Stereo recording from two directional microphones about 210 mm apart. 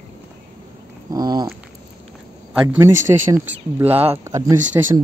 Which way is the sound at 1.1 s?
20° right (ahead or behind).